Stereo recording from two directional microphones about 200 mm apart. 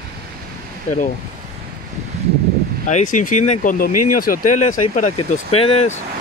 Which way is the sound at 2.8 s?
40° left (ahead or behind).